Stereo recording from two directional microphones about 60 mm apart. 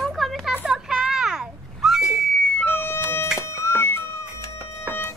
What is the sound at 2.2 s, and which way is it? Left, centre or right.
Cat, centre.